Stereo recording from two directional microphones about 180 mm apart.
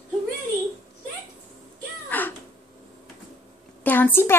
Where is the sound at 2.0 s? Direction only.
10° left (ahead or behind).